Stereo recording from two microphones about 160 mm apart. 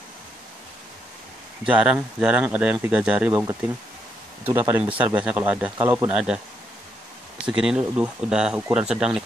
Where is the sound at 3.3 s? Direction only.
20° right (ahead or behind).